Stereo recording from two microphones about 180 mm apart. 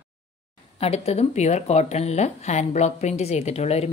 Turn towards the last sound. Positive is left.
turn(degrees=35)  # may be behind; listen again after turning